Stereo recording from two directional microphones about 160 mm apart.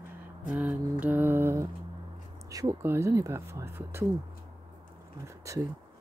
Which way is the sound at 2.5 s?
20° right (ahead or behind).